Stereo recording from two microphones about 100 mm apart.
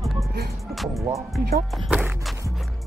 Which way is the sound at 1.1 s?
Centre (ahead or behind).